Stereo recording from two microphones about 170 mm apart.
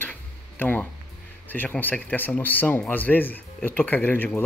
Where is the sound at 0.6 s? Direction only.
10° left (ahead or behind).